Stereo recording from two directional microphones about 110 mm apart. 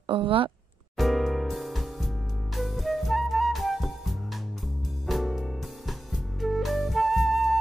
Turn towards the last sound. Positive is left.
turn(degrees=0)  # may be behind; listen again after turning